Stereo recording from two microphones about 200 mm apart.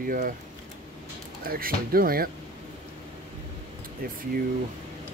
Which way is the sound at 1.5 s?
45° right (ahead or behind).